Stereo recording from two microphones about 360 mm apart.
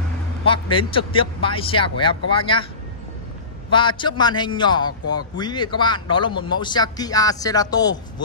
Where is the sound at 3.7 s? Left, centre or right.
Centre.